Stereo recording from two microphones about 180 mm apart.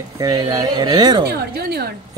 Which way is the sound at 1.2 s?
60° right (ahead or behind).